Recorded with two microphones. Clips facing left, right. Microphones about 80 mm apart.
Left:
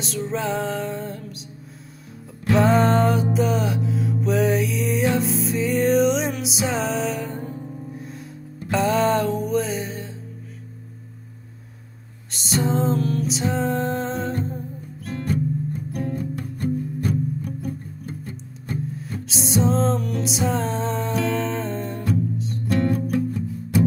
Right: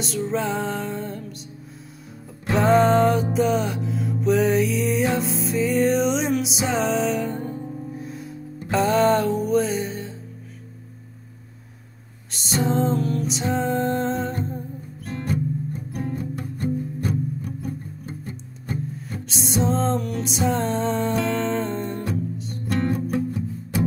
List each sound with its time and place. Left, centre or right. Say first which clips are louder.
0.0 s music: right 1 dB; centre
2.5 s music: right 1 dB; centre
12.3 s music: even; centre
15.9 s music: even; right
18.3 s music: right 1 dB; centre
22.8 s music: left 1 dB; right